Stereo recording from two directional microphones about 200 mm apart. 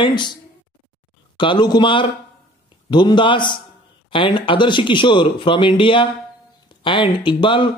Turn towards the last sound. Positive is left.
turn(degrees=25)  # may be behind; listen again after turning